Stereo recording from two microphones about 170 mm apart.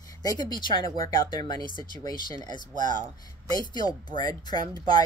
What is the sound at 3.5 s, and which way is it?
Speech, 25° left (ahead or behind).